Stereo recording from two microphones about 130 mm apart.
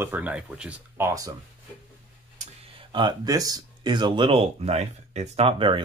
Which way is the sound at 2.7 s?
35° right (ahead or behind).